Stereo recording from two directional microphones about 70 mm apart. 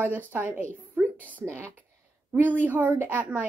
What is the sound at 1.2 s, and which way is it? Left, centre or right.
Speech, left.